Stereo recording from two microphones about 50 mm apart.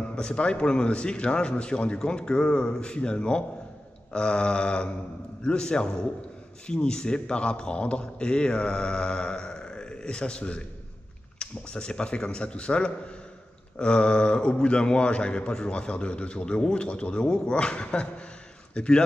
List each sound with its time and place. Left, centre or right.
0.1 s a man's voice: left